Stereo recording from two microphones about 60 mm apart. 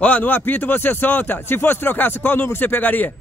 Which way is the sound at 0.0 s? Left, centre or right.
Left.